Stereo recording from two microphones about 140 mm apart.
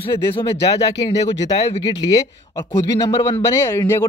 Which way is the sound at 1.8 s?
25° left (ahead or behind).